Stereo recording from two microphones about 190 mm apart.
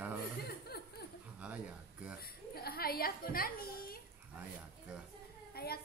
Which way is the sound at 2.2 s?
55° left (ahead or behind).